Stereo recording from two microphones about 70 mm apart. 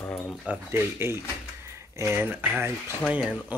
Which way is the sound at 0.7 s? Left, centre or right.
Right.